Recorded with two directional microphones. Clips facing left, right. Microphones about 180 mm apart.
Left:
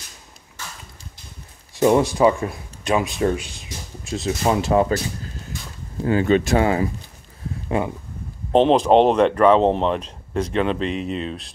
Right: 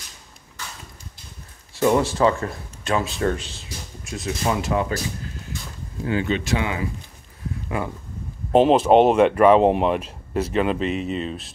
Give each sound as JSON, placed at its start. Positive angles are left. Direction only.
{"t": 1.8, "sound": "speech", "side_deg": 15}
{"t": 4.0, "sound": "speech", "side_deg": 25}
{"t": 6.0, "sound": "speech", "side_deg": 45}
{"t": 8.5, "sound": "speech", "side_deg": -5}